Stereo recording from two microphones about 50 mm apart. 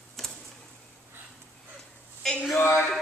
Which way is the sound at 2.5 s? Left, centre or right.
Left.